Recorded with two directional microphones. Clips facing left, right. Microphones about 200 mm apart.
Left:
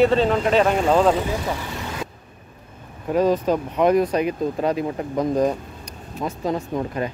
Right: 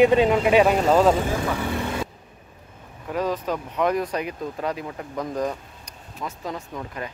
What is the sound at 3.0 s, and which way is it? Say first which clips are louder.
Speech: left 7 dB; 30° left (ahead or behind).